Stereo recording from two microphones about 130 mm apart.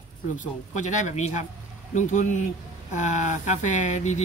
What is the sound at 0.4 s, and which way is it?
Speech, 70° left (ahead or behind).